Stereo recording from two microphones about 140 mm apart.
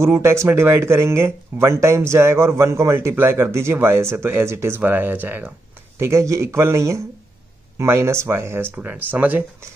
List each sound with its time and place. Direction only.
0.0 s speech: 20° right (ahead or behind)